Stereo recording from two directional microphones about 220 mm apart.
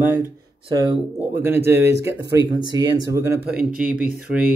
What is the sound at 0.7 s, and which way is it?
Speech, 20° right (ahead or behind).